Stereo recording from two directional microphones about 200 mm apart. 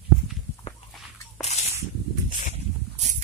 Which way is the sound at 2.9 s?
35° right (ahead or behind).